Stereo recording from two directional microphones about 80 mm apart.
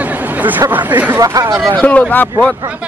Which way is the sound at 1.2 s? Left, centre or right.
Right.